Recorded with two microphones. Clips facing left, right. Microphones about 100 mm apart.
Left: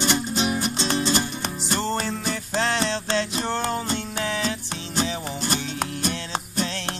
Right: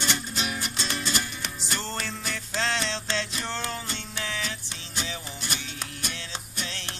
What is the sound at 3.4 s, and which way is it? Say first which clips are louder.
Music: left 7 dB; 50° left (ahead or behind).